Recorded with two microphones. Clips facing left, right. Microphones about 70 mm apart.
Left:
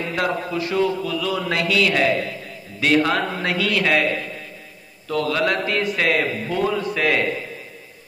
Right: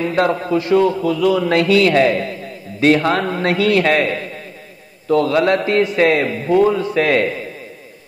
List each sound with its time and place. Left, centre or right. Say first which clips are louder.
0.1 s a man's voice: right 6 dB; right